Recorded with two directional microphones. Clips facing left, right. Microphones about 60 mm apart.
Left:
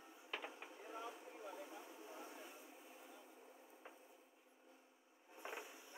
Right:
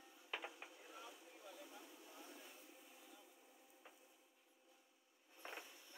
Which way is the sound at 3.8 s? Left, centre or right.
Left.